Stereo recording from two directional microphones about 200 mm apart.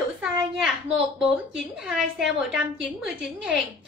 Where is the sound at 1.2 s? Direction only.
Centre (ahead or behind).